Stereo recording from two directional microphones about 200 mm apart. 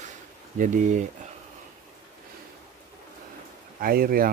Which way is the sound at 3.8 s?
50° right (ahead or behind).